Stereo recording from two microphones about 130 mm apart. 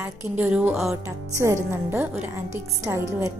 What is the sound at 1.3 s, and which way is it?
A woman's voice, 20° right (ahead or behind).